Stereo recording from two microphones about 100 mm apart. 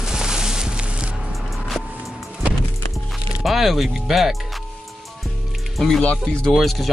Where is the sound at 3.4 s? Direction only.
Centre (ahead or behind).